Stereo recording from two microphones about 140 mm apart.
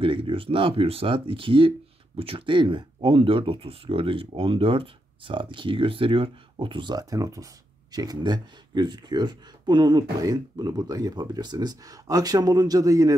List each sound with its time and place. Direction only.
0.0 s speech: 40° right (ahead or behind); by 13.1 s 25° right (ahead or behind)